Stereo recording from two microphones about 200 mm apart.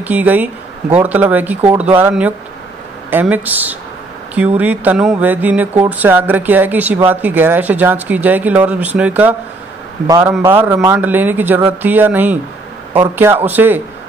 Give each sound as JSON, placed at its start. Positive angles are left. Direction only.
{"t": 0.0, "sound": "speech", "side_deg": -10}
{"t": 10.0, "sound": "a man's voice", "side_deg": -20}